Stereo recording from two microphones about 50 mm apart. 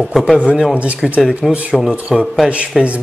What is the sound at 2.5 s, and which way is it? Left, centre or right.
Speech, right.